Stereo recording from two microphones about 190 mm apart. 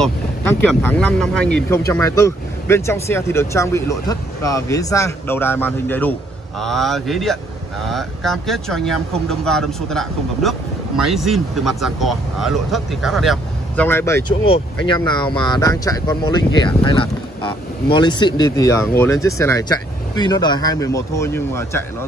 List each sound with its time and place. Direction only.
0.0 s speech: 10° left (ahead or behind)
13.8 s speech: 15° left (ahead or behind)
14.4 s speech: 30° left (ahead or behind); by 21.8 s 15° left (ahead or behind)